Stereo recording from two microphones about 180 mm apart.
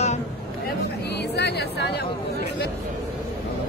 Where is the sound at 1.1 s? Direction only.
65° left (ahead or behind).